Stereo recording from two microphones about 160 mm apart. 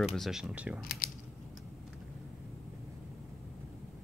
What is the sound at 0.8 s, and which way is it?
Speech, 65° left (ahead or behind).